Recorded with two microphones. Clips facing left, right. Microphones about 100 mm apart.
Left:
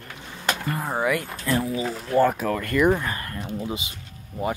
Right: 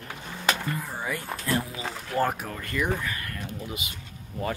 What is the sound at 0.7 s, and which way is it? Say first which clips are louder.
Speech: left 8 dB; 70° left (ahead or behind).